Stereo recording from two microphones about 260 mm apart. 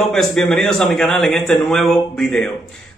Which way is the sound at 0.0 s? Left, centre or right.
Centre.